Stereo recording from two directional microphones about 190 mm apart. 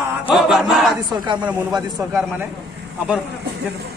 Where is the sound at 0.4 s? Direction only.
Centre (ahead or behind).